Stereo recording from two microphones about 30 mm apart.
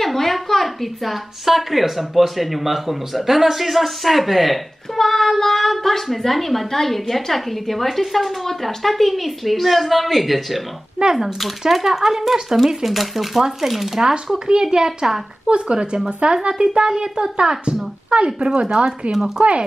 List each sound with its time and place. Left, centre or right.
0.0 s a woman's voice: centre
1.4 s speech: centre
4.9 s speech: centre
14.0 s a woman's voice: right
15.5 s a woman's voice: right
19.1 s speech: centre